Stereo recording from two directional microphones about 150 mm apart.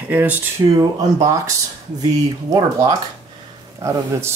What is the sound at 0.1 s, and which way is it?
Speech, 10° right (ahead or behind).